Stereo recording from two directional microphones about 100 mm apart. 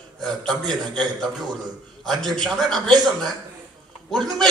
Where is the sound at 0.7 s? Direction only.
5° left (ahead or behind).